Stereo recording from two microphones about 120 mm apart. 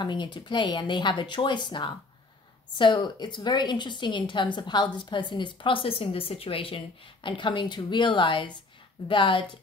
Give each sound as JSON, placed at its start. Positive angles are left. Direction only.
{"t": 0.0, "sound": "a woman's voice", "side_deg": 40}